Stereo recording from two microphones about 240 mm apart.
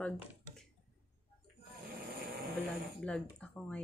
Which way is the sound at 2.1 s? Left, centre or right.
Right.